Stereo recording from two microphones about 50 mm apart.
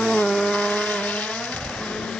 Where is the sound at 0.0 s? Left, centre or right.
Centre.